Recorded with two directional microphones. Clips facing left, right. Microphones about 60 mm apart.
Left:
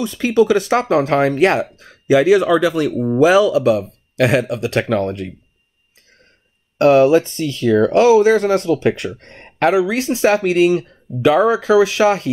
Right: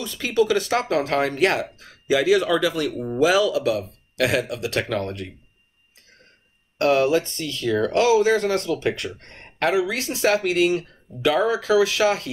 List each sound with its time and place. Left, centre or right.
0.0 s speech: left
6.8 s speech: left